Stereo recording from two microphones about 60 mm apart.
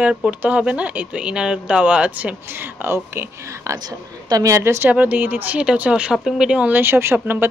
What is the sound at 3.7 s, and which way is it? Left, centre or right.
A woman's voice, right.